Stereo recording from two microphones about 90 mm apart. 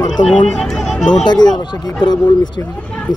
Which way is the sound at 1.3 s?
50° left (ahead or behind).